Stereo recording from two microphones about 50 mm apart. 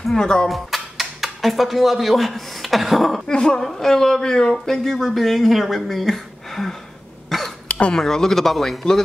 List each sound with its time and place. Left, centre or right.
0.1 s speech: centre
0.5 s speech: centre
3.3 s speech: centre
7.2 s cough: centre
7.6 s a sound: left
7.9 s speech: centre